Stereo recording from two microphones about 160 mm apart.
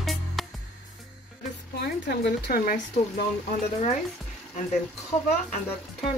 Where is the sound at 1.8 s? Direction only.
90° left; by 2.8 s 65° left (ahead or behind).